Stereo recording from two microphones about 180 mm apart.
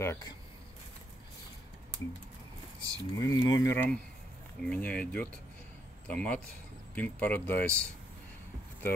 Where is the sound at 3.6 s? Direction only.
10° left (ahead or behind).